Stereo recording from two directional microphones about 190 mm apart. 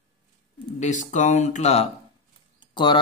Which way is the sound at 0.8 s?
40° left (ahead or behind).